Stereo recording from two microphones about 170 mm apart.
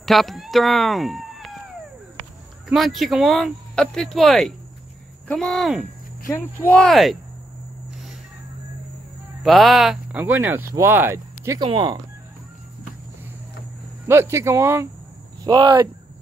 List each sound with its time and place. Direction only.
0.0 s speech: centre (ahead or behind)
2.7 s speech: centre (ahead or behind)
6.2 s speech: 10° left (ahead or behind)
9.4 s speech: centre (ahead or behind); by 11.6 s 15° right (ahead or behind)
11.6 s speech: 30° right (ahead or behind)
14.0 s speech: 15° right (ahead or behind)
15.4 s speech: 25° right (ahead or behind)